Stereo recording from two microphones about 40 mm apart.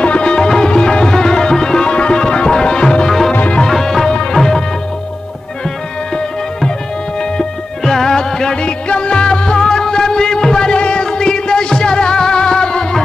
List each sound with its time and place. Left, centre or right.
0.0 s music: left
3.1 s music: centre
4.1 s music: centre
7.2 s music: centre
8.5 s music: left